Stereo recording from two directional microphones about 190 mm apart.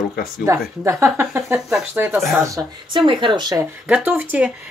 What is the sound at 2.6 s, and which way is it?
Speech, 25° right (ahead or behind).